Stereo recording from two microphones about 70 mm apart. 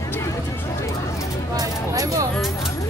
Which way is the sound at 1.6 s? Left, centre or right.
Right.